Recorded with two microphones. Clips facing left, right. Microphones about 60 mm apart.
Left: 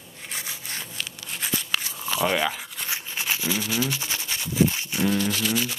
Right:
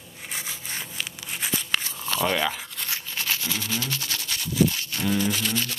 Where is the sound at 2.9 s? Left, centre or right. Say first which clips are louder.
Left 1 dB; centre.